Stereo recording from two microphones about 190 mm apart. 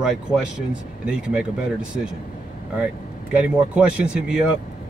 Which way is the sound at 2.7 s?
5° right (ahead or behind).